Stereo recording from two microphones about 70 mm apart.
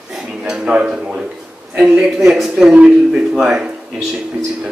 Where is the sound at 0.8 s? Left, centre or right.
Centre.